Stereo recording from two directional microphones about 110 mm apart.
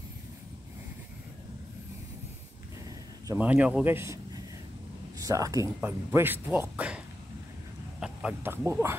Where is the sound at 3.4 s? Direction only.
15° right (ahead or behind).